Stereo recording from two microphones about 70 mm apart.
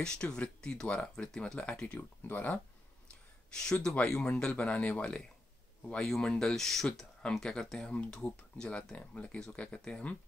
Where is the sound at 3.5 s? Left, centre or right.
Centre.